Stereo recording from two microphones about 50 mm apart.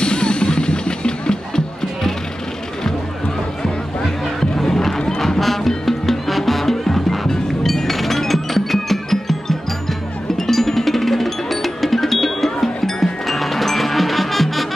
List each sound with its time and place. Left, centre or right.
0.0 s music: centre
4.4 s music: centre